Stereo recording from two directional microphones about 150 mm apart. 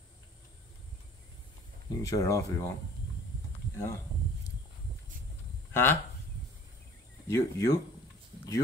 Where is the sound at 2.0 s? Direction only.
20° left (ahead or behind).